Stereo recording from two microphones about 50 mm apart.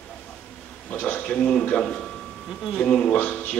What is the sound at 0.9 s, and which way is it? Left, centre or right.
Speech, left.